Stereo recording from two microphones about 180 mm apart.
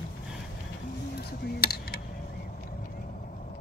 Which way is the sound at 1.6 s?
60° left (ahead or behind).